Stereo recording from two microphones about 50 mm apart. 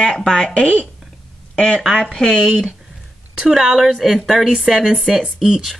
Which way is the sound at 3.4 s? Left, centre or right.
Centre.